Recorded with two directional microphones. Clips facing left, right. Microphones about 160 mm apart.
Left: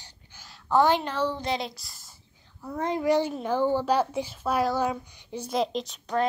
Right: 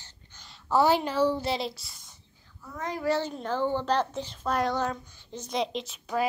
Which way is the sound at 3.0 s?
15° left (ahead or behind).